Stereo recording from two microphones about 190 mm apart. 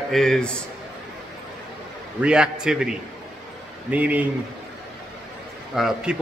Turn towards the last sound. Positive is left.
turn(degrees=0)  # may be behind; listen again after turning